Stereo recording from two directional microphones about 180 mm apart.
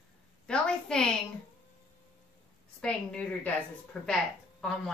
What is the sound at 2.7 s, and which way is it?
Speech, 5° left (ahead or behind).